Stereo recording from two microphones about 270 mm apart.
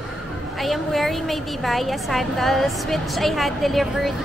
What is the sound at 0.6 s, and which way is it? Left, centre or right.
A woman's voice, centre.